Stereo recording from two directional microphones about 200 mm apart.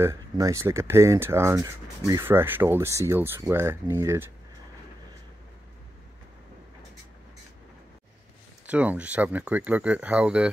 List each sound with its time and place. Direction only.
0.0 s speech: 15° right (ahead or behind)
8.6 s speech: 5° right (ahead or behind)